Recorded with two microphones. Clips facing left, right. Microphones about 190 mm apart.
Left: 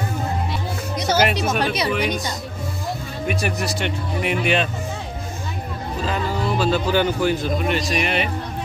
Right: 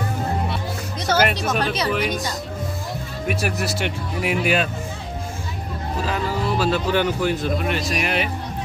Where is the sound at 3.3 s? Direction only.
5° right (ahead or behind).